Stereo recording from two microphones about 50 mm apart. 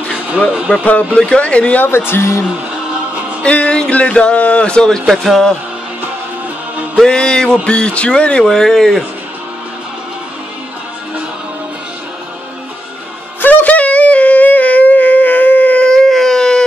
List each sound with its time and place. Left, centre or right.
0.7 s speech: left
1.9 s speech: left
3.4 s speech: left
4.8 s speech: centre
7.1 s speech: centre
8.5 s speech: centre
13.4 s a sound: left
15.8 s a sound: centre